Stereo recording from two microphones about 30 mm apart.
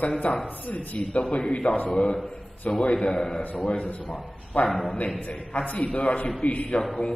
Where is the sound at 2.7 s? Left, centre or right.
Left.